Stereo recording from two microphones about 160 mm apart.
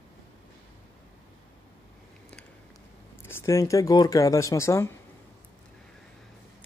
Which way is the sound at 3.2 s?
15° left (ahead or behind).